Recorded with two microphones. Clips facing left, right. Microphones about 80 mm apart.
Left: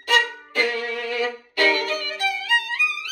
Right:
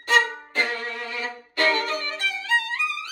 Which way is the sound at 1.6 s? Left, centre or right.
Right.